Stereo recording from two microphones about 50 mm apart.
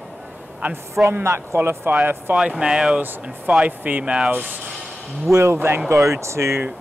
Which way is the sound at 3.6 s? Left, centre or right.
Right.